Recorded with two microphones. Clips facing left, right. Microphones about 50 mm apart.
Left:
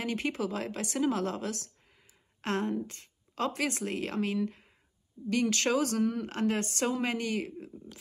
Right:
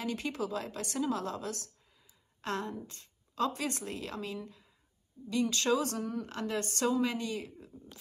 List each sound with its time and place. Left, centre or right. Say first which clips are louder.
0.0 s a woman's voice: left 3 dB; left